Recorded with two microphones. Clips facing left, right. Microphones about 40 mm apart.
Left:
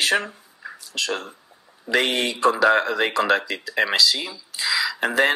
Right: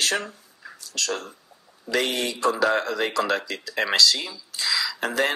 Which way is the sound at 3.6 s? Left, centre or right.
Centre.